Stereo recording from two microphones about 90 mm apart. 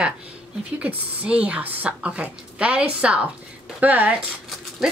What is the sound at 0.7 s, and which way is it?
Speech, 15° right (ahead or behind).